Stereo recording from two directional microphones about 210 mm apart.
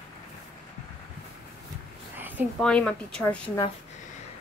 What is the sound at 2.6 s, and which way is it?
A woman's voice, 5° left (ahead or behind).